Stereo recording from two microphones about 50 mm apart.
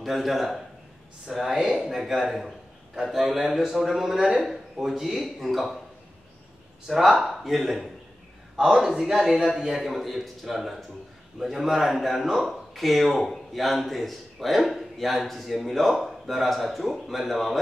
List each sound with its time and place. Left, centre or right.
0.0 s a man's voice: centre
6.9 s a man's voice: centre